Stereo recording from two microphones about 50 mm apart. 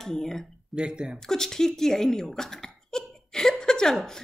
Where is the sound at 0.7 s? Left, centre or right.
Centre.